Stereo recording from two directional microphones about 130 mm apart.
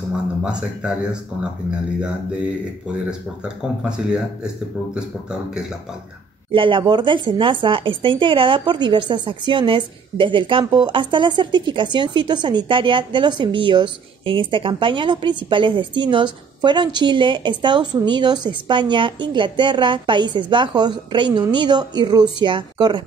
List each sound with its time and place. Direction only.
0.4 s speech: 5° right (ahead or behind)
2.0 s speech: 10° right (ahead or behind)
6.5 s speech: 40° right (ahead or behind)